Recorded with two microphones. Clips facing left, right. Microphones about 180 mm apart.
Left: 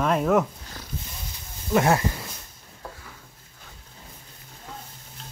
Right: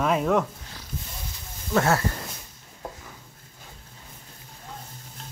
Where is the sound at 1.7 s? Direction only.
15° left (ahead or behind).